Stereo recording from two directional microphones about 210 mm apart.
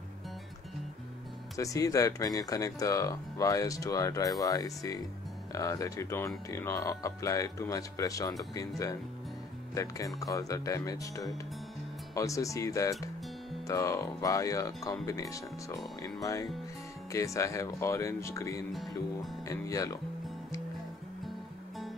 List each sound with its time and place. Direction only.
1.6 s speech: 15° left (ahead or behind)